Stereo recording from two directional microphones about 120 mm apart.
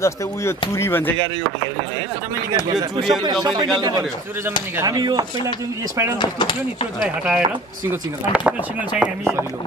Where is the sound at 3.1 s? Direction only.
35° right (ahead or behind).